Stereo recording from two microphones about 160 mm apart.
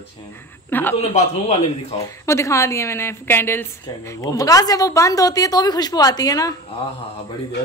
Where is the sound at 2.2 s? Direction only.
15° left (ahead or behind).